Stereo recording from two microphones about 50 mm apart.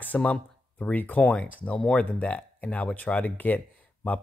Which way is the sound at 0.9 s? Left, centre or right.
Left.